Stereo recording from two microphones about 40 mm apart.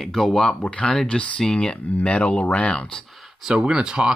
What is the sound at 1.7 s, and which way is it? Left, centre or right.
Speech, left.